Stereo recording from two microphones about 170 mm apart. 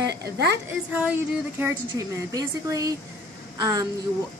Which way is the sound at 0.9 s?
10° right (ahead or behind).